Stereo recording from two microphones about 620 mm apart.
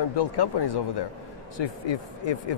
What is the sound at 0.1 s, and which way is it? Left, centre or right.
Speech, left.